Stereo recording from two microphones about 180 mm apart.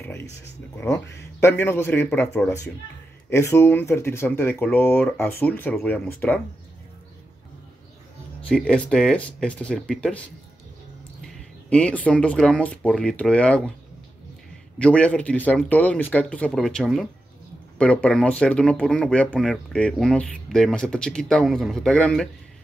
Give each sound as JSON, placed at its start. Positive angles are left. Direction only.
{"t": 0.7, "sound": "speech", "side_deg": 15}
{"t": 8.5, "sound": "speech", "side_deg": 5}
{"t": 11.7, "sound": "speech", "side_deg": 5}
{"t": 14.8, "sound": "speech", "side_deg": 5}